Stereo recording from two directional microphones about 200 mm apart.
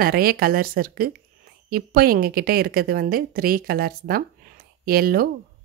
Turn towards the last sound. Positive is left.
turn(degrees=-45)  # may be behind; listen again after turning